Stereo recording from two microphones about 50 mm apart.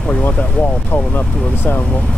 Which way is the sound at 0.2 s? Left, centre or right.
Left.